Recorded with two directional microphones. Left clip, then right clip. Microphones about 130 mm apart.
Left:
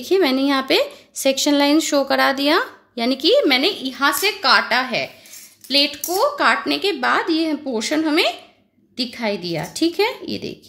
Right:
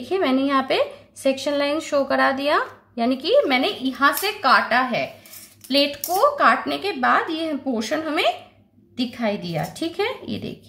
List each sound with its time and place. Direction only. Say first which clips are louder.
0.1 s a woman's voice: left 3 dB; 40° left (ahead or behind)